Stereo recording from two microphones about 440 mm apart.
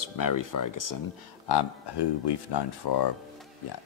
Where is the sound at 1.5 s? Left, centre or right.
Left.